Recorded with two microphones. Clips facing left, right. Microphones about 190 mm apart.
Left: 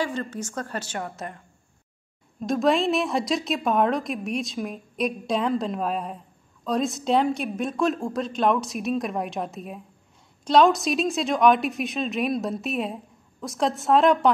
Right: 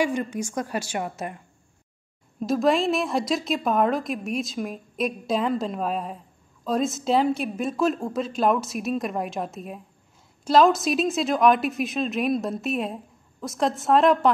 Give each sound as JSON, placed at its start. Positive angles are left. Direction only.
{"t": 0.0, "sound": "a woman's voice", "side_deg": -15}
{"t": 2.4, "sound": "a woman's voice", "side_deg": 0}